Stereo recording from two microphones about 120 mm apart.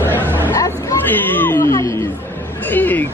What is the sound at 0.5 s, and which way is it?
Music, 25° left (ahead or behind).